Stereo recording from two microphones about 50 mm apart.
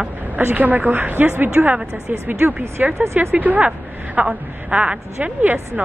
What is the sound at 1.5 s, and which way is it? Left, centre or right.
A woman's voice, right.